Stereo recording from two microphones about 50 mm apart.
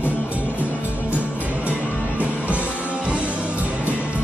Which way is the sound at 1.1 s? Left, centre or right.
Right.